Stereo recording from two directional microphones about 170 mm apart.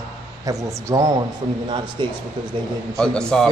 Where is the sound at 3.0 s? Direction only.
5° left (ahead or behind).